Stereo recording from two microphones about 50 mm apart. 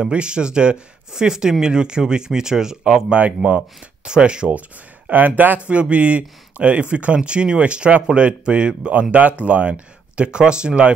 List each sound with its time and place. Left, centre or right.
0.0 s speech: centre
4.5 s speech: right
5.7 s speech: right